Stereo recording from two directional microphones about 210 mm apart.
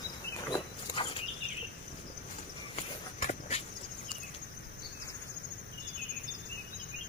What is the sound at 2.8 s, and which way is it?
Walk, 35° left (ahead or behind).